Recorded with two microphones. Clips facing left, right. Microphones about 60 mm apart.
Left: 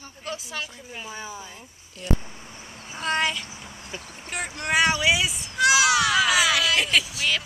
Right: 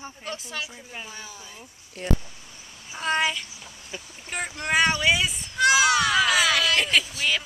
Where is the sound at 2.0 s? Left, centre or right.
Right.